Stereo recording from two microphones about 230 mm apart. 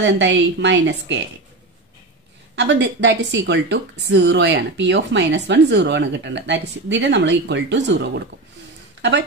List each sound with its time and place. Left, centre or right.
0.0 s speech: right
2.5 s speech: right